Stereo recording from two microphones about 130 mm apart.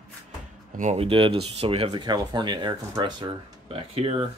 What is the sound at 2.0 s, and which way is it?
Speech, 35° right (ahead or behind).